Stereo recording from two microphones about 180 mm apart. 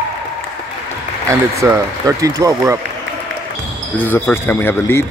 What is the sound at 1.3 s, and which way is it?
Speech, 15° right (ahead or behind).